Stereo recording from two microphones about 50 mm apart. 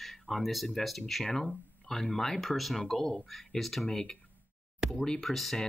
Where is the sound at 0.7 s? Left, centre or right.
Centre.